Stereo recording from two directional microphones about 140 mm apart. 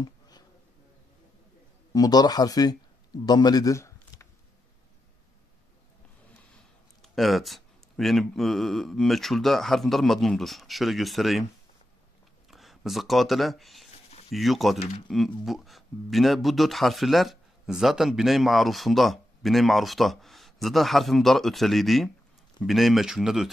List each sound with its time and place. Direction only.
2.0 s a man's voice: 25° left (ahead or behind)
6.5 s speech: centre (ahead or behind)
12.4 s speech: centre (ahead or behind)